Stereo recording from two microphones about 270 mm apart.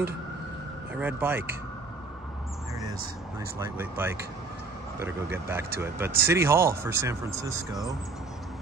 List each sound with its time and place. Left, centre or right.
0.9 s speech: centre
3.5 s speech: centre